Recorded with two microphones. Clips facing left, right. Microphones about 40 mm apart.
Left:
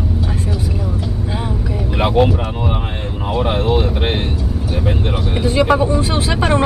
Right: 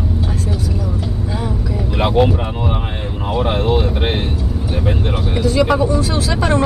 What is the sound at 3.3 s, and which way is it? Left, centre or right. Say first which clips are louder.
Speech: even; centre.